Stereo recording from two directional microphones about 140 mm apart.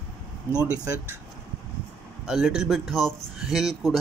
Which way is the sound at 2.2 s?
5° right (ahead or behind).